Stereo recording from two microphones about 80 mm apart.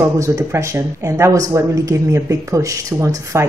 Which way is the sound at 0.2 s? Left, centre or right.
Right.